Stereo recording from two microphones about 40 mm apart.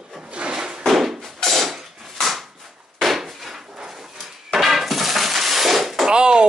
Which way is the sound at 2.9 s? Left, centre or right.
Centre.